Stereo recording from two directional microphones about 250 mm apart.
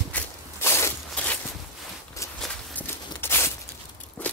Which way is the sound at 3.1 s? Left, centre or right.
Centre.